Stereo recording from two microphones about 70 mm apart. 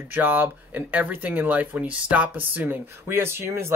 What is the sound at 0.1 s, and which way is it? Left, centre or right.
Speech, right.